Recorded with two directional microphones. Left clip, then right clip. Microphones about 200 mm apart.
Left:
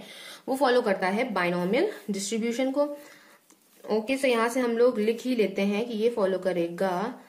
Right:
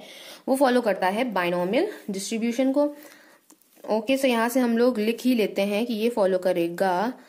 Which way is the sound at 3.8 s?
45° right (ahead or behind).